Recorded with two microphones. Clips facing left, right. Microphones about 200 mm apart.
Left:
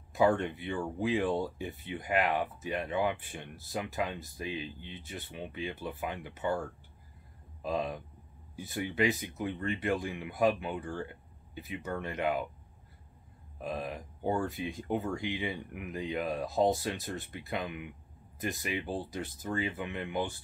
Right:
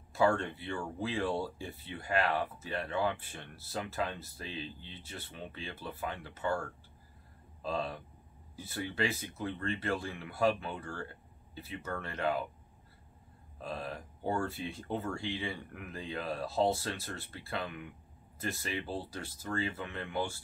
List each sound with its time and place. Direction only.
0.1 s speech: 15° left (ahead or behind)
13.6 s speech: 15° left (ahead or behind)